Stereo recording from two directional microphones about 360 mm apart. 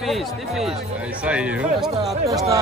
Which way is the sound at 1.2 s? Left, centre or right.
Centre.